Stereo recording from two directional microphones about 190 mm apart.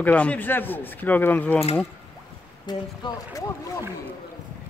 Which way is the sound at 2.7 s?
20° left (ahead or behind).